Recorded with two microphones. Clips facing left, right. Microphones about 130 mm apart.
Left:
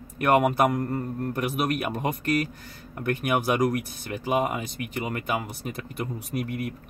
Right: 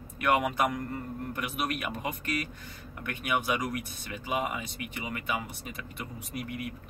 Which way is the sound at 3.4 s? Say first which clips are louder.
Left 7 dB; 65° left (ahead or behind).